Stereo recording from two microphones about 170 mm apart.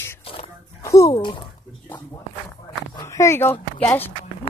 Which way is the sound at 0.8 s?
20° left (ahead or behind).